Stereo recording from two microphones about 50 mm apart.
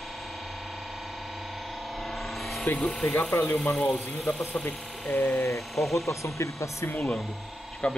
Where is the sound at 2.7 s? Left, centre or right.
Centre.